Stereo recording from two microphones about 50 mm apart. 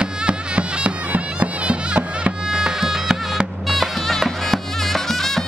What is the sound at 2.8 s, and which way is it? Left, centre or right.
Music, centre.